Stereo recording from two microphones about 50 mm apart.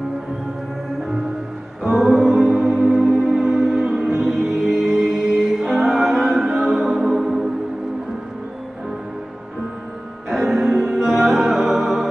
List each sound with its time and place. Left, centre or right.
1.8 s music: centre
10.3 s music: centre